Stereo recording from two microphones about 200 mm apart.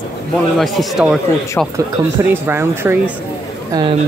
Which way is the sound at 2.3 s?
10° right (ahead or behind).